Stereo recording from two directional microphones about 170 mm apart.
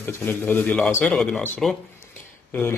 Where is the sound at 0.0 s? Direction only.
10° left (ahead or behind).